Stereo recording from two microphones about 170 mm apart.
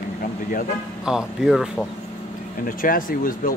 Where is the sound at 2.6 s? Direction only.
55° left (ahead or behind).